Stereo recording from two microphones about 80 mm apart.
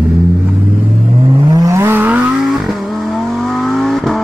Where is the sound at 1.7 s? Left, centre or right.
Right.